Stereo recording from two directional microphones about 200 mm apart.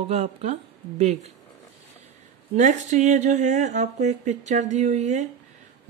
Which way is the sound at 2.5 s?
35° right (ahead or behind).